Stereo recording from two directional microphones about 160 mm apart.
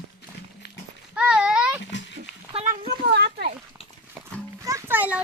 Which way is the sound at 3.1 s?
90° right.